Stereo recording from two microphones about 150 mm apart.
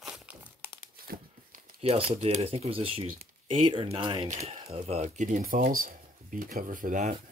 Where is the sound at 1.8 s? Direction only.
40° right (ahead or behind); by 7.1 s 65° right (ahead or behind).